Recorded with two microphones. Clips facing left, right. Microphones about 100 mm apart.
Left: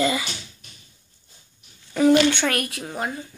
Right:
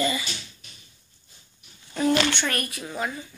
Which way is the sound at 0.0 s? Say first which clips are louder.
Left 4 dB; 90° left.